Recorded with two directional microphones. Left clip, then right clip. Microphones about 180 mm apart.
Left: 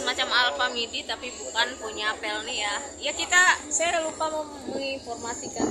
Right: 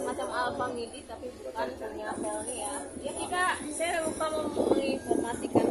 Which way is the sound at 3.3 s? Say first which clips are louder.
Left 10 dB; 15° left (ahead or behind).